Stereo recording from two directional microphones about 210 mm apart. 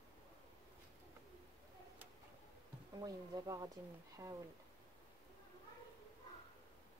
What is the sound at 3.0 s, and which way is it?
Speech, 15° right (ahead or behind).